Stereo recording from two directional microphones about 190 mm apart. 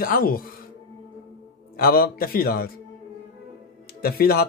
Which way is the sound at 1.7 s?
50° left (ahead or behind).